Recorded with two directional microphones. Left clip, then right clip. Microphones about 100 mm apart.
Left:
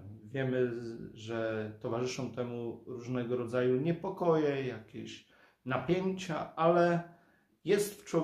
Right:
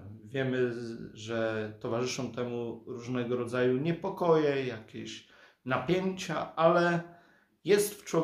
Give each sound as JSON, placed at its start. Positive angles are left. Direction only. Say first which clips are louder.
{"t": 0.3, "sound": "speech", "louder": "right 2 dB", "side_deg": -20}